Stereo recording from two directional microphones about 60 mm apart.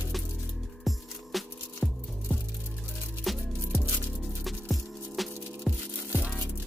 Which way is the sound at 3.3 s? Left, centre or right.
Centre.